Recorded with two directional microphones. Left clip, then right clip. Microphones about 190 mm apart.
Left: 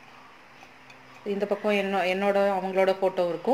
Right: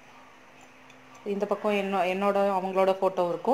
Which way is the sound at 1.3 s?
5° right (ahead or behind).